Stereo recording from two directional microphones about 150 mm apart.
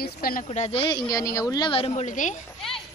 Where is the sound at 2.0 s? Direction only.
55° left (ahead or behind).